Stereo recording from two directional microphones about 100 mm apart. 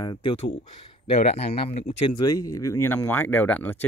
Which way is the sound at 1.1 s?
90° left.